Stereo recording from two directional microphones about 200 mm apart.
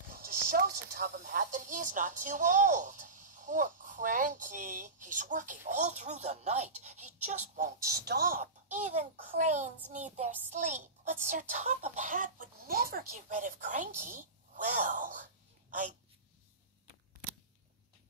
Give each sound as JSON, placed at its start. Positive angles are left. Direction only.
{"t": 0.1, "sound": "speech", "side_deg": -45}
{"t": 8.4, "sound": "a child's voice", "side_deg": -35}